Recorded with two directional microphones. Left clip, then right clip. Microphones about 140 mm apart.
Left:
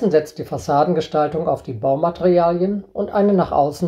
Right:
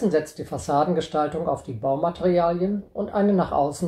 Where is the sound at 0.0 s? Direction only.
30° left (ahead or behind).